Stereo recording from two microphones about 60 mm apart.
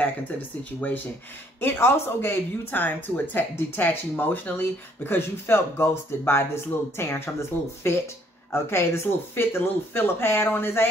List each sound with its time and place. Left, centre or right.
0.0 s speech: left
1.6 s speech: left